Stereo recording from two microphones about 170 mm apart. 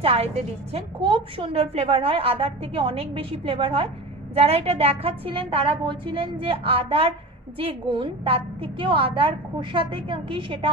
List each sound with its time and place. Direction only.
0.0 s a woman's voice: 35° right (ahead or behind)